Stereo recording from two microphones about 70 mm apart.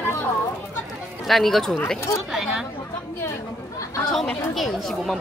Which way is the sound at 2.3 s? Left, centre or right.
Centre.